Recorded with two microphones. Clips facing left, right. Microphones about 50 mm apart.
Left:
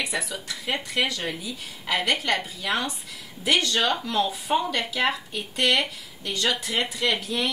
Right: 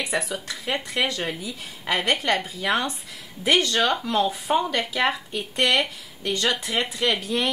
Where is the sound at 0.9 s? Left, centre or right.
Right.